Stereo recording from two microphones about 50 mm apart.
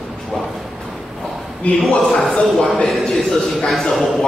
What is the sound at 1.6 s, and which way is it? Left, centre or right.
Speech, left.